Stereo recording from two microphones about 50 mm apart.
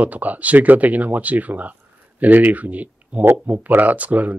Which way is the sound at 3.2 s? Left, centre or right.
Right.